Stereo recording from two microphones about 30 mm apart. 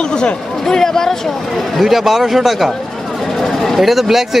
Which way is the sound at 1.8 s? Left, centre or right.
Centre.